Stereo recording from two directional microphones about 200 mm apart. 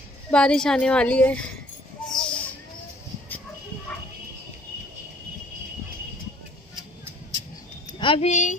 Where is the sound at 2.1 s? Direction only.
5° left (ahead or behind).